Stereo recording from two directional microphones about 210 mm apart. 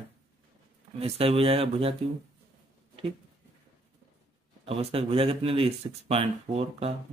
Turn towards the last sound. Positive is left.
turn(degrees=-30)  # may be behind; listen again after turning